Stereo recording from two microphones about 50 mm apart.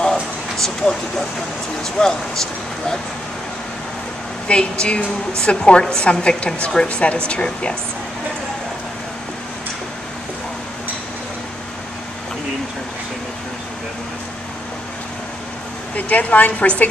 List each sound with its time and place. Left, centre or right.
0.0 s a sound: centre
1.8 s speech: centre
4.5 s a woman's voice: centre
16.1 s a woman's voice: left